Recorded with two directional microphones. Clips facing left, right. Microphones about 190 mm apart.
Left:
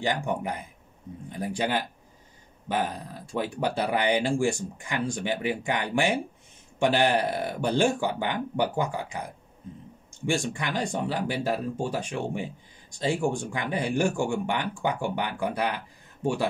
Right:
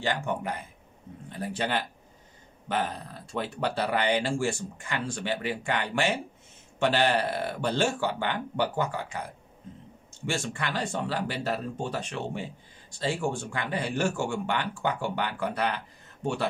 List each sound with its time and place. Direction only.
0.0 s speech: 15° left (ahead or behind)
3.3 s speech: 10° left (ahead or behind)